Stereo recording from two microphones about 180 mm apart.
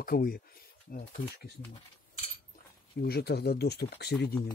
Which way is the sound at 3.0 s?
60° left (ahead or behind).